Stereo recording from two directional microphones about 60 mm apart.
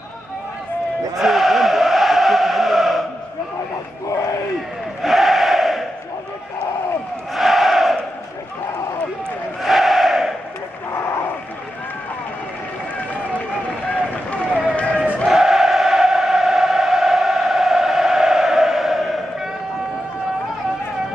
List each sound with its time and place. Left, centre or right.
1.1 s chant: centre
5.0 s crowd: centre
7.3 s crowd: centre
9.6 s battle cry: centre
13.8 s run: centre
15.2 s a sound: centre